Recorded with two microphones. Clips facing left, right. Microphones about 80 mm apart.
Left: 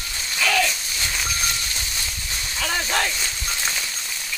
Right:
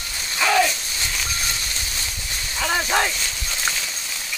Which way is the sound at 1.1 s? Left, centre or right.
Centre.